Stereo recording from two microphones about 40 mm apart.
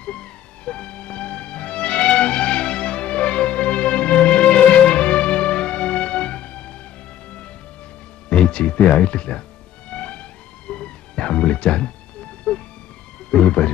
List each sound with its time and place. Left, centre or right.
0.0 s music: left
8.3 s speech: left
9.8 s music: left